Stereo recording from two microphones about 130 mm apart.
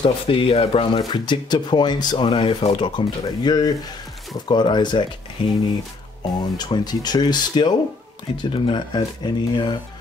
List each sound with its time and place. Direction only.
0.0 s speech: 45° left (ahead or behind)